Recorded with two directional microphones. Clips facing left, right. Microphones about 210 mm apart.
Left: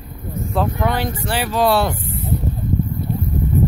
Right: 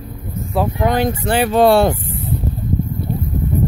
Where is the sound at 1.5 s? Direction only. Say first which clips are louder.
Right 5 dB; 55° right (ahead or behind).